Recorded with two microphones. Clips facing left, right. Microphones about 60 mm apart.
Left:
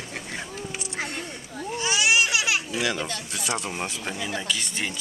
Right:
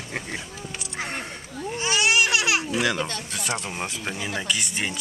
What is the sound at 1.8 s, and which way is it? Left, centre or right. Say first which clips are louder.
Baby cry: right 1 dB; right.